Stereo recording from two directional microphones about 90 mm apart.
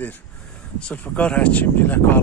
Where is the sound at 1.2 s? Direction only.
15° left (ahead or behind).